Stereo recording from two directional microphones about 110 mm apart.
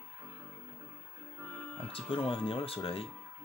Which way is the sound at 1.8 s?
55° left (ahead or behind).